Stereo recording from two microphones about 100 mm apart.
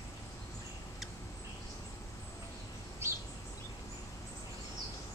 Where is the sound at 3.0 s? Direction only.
25° right (ahead or behind).